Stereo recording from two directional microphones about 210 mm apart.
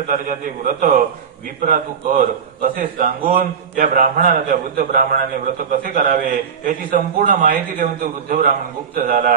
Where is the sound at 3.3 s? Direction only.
40° right (ahead or behind).